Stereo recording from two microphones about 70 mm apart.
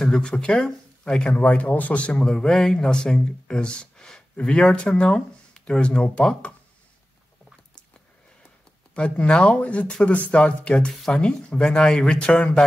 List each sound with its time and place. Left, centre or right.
0.0 s a man's voice: centre
2.3 s speech: centre
8.9 s speech: centre
10.9 s speech: centre